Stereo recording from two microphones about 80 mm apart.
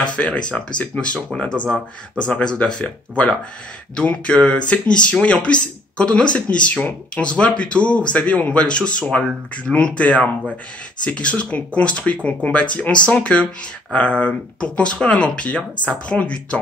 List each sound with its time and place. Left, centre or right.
0.0 s speech: centre